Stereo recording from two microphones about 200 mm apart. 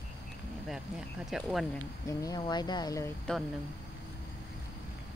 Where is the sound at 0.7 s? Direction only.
Centre (ahead or behind).